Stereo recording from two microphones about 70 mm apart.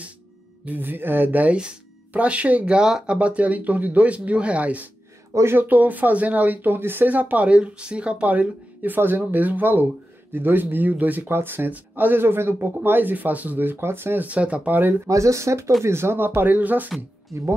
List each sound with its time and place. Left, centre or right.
0.7 s speech: right
5.3 s speech: right
15.0 s speech: right
17.3 s speech: right